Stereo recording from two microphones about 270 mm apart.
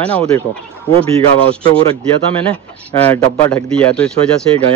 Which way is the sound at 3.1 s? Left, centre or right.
Centre.